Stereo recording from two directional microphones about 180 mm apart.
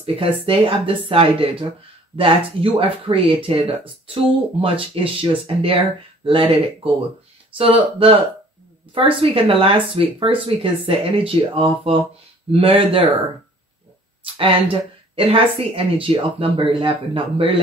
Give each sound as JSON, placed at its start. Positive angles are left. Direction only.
{"t": 0.0, "sound": "speech", "side_deg": -30}
{"t": 8.9, "sound": "speech", "side_deg": -30}
{"t": 14.2, "sound": "speech", "side_deg": -30}